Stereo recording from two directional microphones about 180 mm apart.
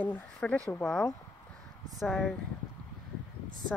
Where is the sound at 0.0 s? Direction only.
5° left (ahead or behind).